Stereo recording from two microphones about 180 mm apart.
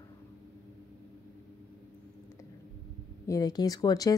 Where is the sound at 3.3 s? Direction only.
20° left (ahead or behind).